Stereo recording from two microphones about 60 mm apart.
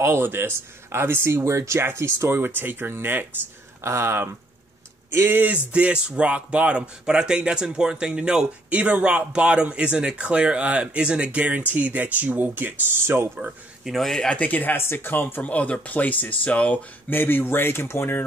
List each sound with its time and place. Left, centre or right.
0.0 s speech: right
5.7 s speech: centre; by 13.3 s right
13.8 s speech: centre
14.3 s speech: left
15.4 s speech: left